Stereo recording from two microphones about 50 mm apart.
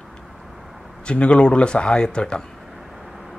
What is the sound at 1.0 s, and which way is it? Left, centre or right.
A man's voice, left.